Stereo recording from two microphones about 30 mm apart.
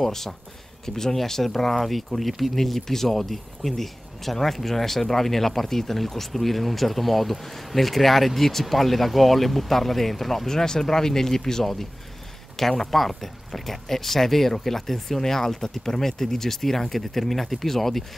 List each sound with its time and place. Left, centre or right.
0.0 s speech: centre
2.1 s speech: centre
10.5 s speech: left